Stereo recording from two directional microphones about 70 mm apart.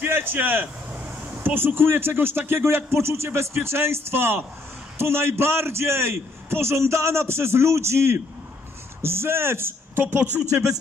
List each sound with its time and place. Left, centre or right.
0.0 s a man's voice: right
10.5 s speech: right